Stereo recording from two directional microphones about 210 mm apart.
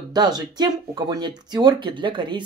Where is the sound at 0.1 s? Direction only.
20° right (ahead or behind).